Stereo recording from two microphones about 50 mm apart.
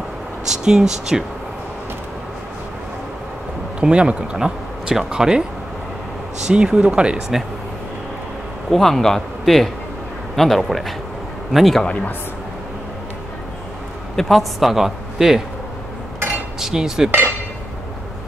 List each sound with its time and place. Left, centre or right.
0.5 s speech: centre
3.8 s speech: right
6.5 s speech: centre
8.7 s a man's voice: centre
11.8 s speech: centre
14.1 s a man's voice: centre
16.5 s cutlery: centre